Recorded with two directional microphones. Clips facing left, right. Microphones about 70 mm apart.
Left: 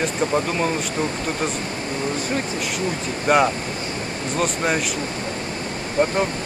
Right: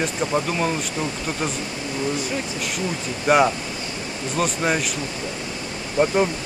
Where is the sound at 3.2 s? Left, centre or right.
Centre.